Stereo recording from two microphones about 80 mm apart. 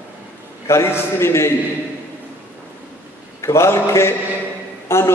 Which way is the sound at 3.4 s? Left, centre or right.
Left.